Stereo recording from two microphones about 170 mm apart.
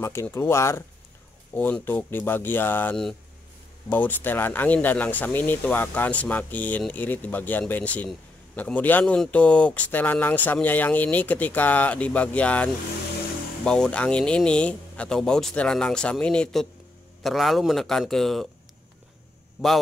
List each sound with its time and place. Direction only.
0.0 s speech: 15° left (ahead or behind)
19.6 s speech: centre (ahead or behind)